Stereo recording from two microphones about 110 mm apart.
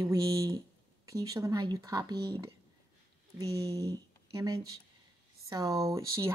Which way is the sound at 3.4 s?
30° right (ahead or behind).